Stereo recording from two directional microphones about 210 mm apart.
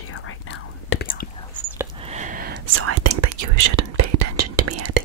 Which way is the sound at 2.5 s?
85° right.